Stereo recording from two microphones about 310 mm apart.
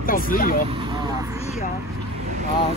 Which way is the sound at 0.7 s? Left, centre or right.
Centre.